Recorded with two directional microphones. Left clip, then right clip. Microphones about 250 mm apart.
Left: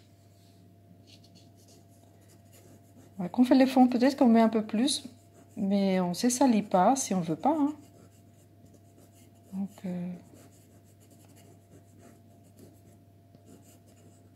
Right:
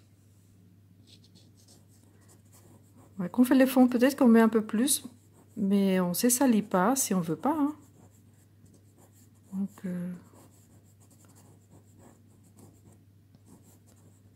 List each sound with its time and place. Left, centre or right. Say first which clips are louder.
3.2 s speech: even; right